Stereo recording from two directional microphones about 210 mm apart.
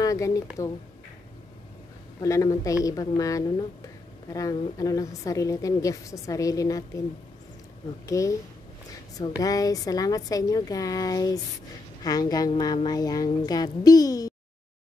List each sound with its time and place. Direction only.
0.0 s a woman's voice: 15° left (ahead or behind)
2.1 s a woman's voice: 15° left (ahead or behind)
8.1 s a woman's voice: 15° left (ahead or behind)
9.4 s a woman's voice: 15° left (ahead or behind)